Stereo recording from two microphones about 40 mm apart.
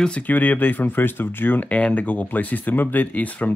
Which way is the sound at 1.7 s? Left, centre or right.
Left.